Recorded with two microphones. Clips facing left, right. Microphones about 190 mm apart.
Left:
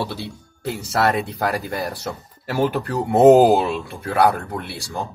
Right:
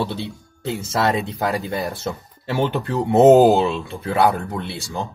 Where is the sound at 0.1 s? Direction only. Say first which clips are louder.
Right 2 dB; 20° right (ahead or behind).